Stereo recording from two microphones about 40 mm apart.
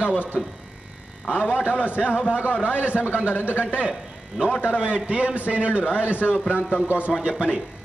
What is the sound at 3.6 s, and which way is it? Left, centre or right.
A man's voice, right.